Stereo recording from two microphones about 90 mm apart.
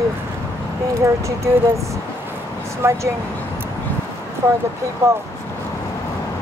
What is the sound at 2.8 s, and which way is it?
Speech, 30° right (ahead or behind).